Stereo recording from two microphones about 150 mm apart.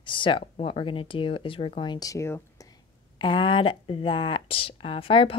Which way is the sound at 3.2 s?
35° left (ahead or behind).